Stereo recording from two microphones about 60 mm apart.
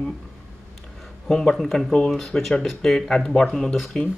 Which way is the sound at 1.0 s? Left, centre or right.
Centre.